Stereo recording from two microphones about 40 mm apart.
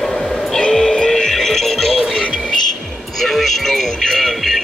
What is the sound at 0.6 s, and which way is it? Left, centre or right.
Music, centre.